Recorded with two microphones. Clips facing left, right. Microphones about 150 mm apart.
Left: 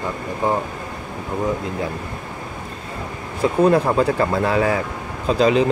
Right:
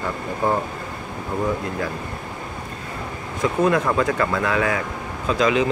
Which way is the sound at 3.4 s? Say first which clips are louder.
Left 4 dB; 30° left (ahead or behind).